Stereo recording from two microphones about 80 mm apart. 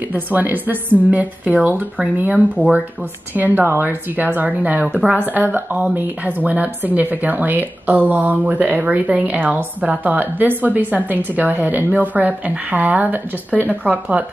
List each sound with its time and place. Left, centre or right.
0.1 s speech: right